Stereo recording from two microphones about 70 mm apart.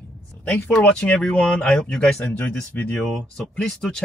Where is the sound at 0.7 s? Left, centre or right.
Centre.